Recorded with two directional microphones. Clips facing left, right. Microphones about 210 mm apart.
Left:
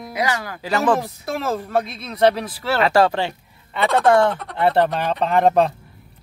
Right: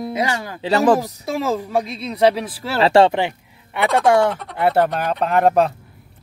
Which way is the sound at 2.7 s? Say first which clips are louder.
Right 4 dB; 30° right (ahead or behind).